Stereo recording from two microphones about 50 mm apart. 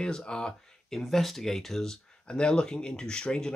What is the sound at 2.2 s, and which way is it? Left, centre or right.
Speech, centre.